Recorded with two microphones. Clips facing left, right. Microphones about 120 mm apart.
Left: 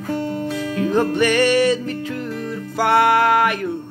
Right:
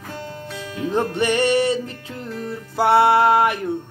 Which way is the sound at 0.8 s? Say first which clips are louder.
Left 3 dB; 25° right (ahead or behind).